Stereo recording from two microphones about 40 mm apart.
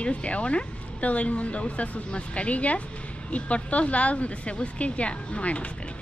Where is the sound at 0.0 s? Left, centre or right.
Left.